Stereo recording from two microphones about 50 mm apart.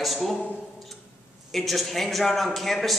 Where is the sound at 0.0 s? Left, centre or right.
Centre.